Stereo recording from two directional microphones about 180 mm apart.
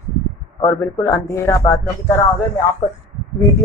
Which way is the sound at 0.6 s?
15° left (ahead or behind).